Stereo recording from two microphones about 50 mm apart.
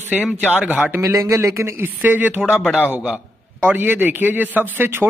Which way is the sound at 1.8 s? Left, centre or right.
Right.